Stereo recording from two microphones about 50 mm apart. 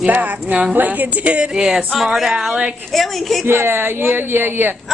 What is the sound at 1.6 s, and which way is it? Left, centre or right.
Speech, centre.